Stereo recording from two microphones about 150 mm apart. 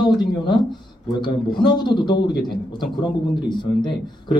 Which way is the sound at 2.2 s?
90° left.